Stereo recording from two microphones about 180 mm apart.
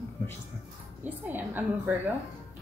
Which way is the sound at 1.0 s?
10° right (ahead or behind).